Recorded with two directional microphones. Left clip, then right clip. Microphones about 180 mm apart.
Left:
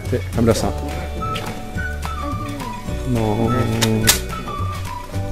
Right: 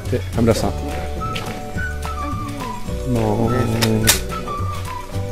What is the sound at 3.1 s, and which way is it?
Speech, centre (ahead or behind).